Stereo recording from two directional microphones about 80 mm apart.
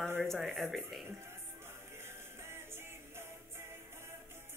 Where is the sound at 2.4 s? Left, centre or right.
Right.